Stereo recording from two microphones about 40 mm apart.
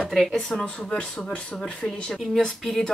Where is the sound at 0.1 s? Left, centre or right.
Centre.